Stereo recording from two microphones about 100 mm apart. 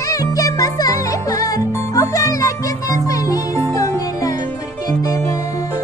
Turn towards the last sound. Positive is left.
turn(degrees=35)  # may be behind; listen again after turning